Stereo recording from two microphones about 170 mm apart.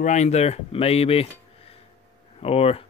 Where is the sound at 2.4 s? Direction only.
35° left (ahead or behind).